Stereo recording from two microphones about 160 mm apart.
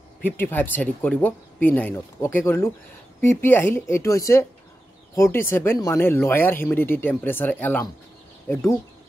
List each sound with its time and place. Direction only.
0.2 s speech: 10° left (ahead or behind)